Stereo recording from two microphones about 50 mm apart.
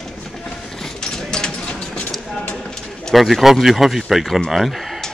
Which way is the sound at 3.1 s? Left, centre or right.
Centre.